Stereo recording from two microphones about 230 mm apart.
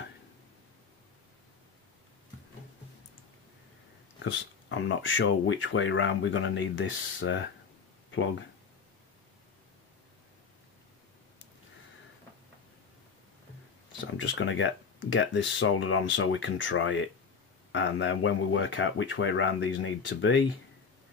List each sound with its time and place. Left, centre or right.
4.2 s speech: left
14.1 s speech: left